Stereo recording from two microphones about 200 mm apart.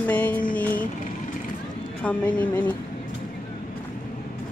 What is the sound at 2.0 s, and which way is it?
Speech, 5° left (ahead or behind).